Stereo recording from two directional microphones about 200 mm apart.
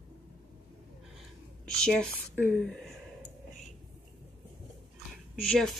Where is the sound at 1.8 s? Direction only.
5° left (ahead or behind).